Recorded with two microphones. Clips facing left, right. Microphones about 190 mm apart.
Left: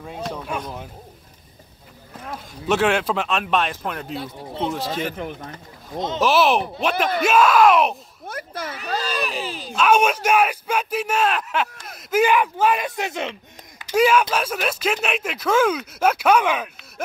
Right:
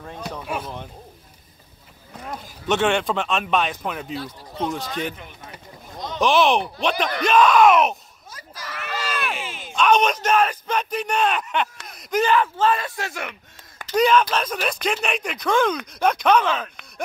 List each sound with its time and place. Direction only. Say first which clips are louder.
0.4 s a man's voice: even; 5° right (ahead or behind)
2.1 s a man's voice: even; centre (ahead or behind)
4.2 s speech: left 1 dB; 25° left (ahead or behind)
4.7 s a man's voice: left 2 dB; centre (ahead or behind)
5.1 s speech: left 11 dB; 55° left (ahead or behind)
5.9 s speech: left 4 dB; 20° left (ahead or behind)
6.2 s a man's voice: even; 5° left (ahead or behind)
8.3 s a sound: left 8 dB; 60° left (ahead or behind)
8.8 s a sound: left 2 dB; 35° left (ahead or behind)
9.8 s speech: left 1 dB; 5° left (ahead or behind)
13.8 s a man's voice: left 1 dB; 10° left (ahead or behind)